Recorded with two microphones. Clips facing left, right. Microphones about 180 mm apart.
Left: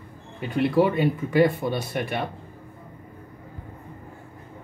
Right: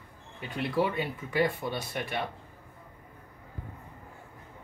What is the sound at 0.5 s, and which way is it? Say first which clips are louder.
Speech: left 8 dB; 60° left (ahead or behind).